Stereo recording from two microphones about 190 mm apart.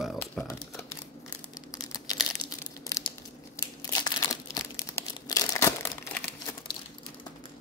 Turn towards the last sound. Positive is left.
turn(degrees=15)  # may be behind; listen again after turning